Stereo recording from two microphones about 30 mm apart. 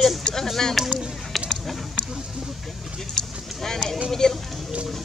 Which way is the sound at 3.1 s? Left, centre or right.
Centre.